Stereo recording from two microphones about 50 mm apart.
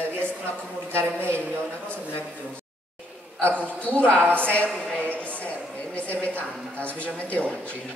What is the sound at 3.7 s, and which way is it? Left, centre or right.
Speech, left.